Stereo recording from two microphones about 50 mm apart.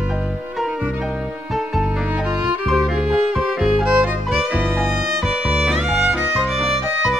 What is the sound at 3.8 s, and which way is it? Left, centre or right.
Music, centre.